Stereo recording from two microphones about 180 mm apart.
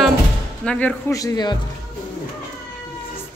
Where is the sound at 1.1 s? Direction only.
20° left (ahead or behind).